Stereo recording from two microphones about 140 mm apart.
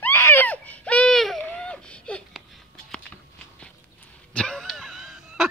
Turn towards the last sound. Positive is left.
turn(degrees=0)  # may be behind; listen again after turning